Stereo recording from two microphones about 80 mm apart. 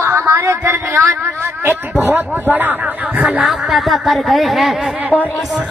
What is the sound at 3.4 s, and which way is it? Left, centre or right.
Speech, centre.